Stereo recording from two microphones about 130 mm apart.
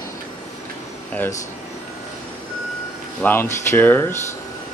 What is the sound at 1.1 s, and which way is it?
Speech, 10° left (ahead or behind).